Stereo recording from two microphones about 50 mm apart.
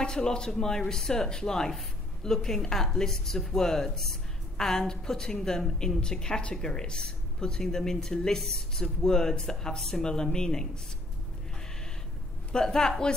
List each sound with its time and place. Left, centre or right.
0.0 s a man's voice: centre
12.5 s speech: centre